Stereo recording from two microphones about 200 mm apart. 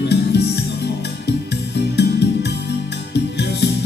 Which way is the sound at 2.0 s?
55° left (ahead or behind).